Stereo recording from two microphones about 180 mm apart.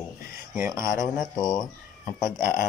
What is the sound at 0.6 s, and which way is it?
Speech, 15° right (ahead or behind).